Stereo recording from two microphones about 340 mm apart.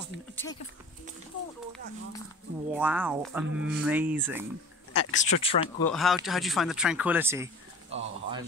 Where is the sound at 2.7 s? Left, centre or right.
Centre.